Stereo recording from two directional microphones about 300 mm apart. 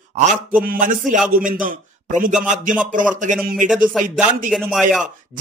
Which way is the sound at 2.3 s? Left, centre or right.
Centre.